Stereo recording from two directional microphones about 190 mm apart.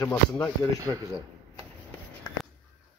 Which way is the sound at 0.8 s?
15° right (ahead or behind).